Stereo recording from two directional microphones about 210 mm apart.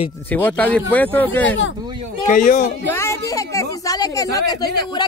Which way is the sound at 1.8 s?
20° right (ahead or behind).